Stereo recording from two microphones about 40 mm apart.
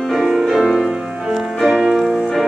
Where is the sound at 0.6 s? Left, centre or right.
Centre.